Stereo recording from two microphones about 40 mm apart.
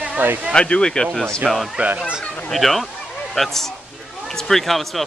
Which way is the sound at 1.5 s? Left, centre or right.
Centre.